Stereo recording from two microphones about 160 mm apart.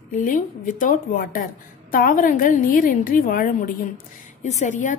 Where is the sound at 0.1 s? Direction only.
55° left (ahead or behind).